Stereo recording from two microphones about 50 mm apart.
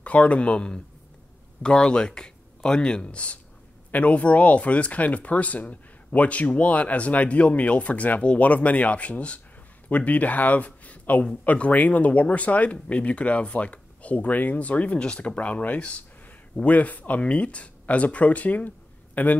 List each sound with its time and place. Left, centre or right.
0.0 s a man's voice: left